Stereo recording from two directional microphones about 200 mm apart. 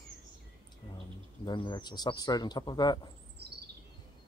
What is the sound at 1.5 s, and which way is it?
Speech, 20° left (ahead or behind).